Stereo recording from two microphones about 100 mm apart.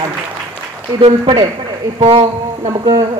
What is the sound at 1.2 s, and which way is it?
Speech, 45° right (ahead or behind).